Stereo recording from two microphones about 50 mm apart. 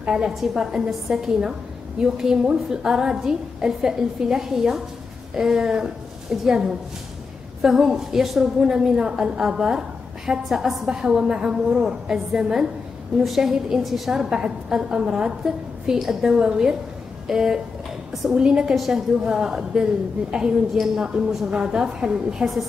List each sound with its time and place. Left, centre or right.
0.0 s a woman's voice: centre
18.8 s a woman's voice: centre
22.4 s a woman's voice: centre